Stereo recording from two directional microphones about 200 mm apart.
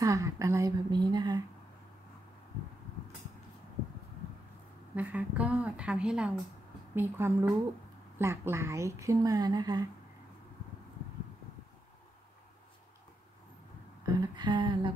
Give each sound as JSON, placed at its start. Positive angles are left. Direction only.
{"t": 0.0, "sound": "speech", "side_deg": -15}
{"t": 4.9, "sound": "a woman's voice", "side_deg": -5}
{"t": 14.0, "sound": "a sound", "side_deg": -20}